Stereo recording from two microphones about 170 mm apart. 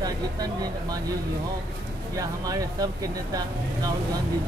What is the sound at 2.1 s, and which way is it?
Speech, 20° right (ahead or behind).